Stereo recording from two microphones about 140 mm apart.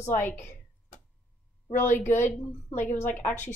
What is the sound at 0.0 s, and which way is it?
Speech, 15° left (ahead or behind).